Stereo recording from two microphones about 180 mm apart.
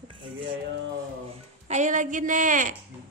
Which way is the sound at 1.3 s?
40° right (ahead or behind).